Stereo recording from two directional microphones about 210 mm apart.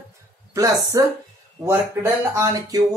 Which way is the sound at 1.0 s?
15° right (ahead or behind).